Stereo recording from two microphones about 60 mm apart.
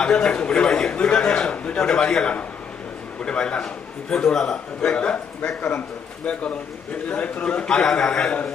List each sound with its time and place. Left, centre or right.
0.0 s a man's voice: centre